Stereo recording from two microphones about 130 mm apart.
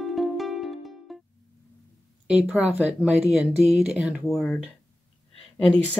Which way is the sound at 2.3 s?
10° right (ahead or behind).